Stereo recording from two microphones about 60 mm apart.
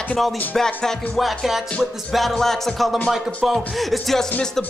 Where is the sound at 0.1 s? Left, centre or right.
Centre.